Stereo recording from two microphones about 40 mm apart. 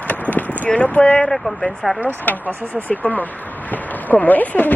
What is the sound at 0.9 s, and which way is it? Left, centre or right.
Speech, left.